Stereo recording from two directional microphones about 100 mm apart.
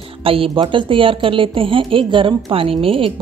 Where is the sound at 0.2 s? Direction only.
65° right (ahead or behind).